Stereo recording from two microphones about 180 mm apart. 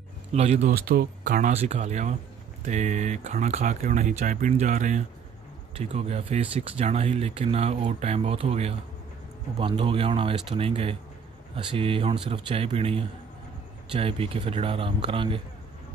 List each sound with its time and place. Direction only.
0.3 s speech: 35° right (ahead or behind)
0.7 s speech: 55° right (ahead or behind); by 15.4 s 30° right (ahead or behind)